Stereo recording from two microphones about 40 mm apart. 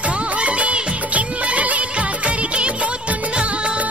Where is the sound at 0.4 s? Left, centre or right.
Right.